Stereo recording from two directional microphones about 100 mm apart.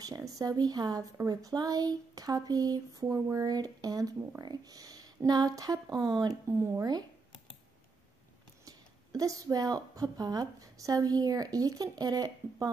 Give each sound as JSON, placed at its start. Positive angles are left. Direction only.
{"t": 0.0, "sound": "a woman's voice", "side_deg": -40}
{"t": 8.6, "sound": "a woman's voice", "side_deg": -35}